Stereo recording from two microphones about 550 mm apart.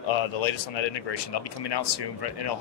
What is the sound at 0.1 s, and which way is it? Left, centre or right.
A man's voice, left.